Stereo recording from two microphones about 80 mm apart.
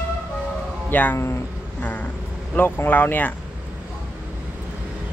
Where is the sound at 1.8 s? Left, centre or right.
Centre.